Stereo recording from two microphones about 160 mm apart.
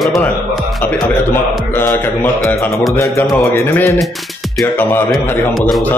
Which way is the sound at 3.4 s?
15° left (ahead or behind).